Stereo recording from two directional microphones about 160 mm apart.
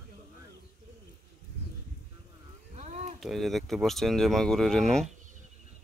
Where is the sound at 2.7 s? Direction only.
45° right (ahead or behind).